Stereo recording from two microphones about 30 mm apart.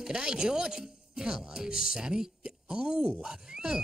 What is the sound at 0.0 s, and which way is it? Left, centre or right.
Speech, right.